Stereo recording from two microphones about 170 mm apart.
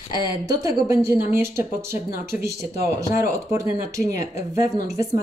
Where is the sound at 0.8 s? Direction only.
15° right (ahead or behind).